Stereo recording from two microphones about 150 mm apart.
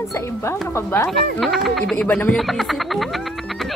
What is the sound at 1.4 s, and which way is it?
Speech, centre (ahead or behind).